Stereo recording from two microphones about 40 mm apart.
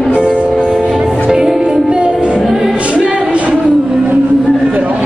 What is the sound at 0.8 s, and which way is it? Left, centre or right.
Music, centre.